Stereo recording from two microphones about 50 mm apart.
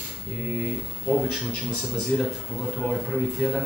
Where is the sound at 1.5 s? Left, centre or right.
Left.